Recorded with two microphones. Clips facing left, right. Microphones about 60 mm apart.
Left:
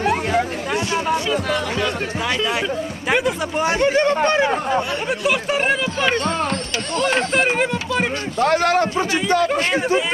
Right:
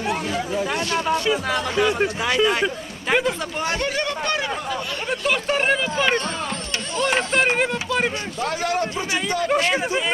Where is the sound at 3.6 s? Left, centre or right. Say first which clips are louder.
Left 8 dB; left.